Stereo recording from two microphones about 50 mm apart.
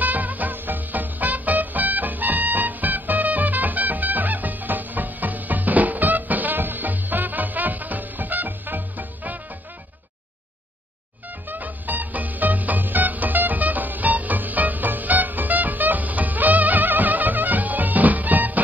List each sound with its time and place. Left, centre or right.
0.0 s music: right
11.4 s music: right